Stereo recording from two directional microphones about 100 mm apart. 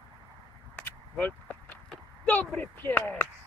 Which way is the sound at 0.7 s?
15° left (ahead or behind).